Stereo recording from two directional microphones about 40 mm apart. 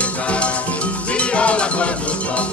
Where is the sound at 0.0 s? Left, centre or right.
Left.